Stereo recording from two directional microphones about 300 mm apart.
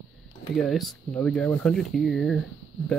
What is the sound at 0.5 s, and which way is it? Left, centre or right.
Speech, centre.